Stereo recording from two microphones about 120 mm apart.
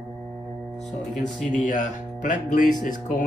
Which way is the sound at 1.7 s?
90° left.